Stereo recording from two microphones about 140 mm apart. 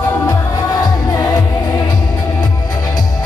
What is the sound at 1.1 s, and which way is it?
Music, 25° left (ahead or behind).